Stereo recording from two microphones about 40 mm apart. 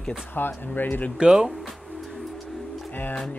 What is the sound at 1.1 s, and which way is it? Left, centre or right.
Speech, centre.